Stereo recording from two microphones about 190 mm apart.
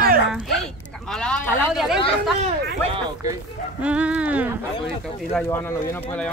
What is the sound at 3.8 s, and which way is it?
Speech, 5° right (ahead or behind).